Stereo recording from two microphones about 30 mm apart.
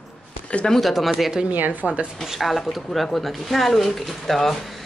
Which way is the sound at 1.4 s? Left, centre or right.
Right.